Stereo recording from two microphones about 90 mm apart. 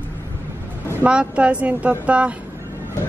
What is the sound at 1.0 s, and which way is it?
Speech, 15° right (ahead or behind).